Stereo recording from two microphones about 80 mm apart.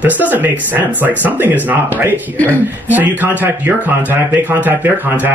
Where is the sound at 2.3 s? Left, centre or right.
Left.